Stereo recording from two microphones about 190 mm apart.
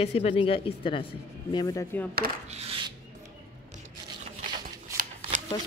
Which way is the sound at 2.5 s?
30° right (ahead or behind).